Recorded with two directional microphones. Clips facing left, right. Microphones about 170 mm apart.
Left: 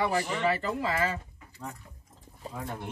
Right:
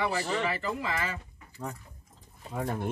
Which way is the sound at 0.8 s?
35° left (ahead or behind).